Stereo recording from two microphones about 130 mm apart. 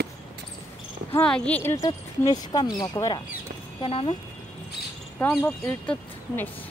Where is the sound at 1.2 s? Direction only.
5° left (ahead or behind).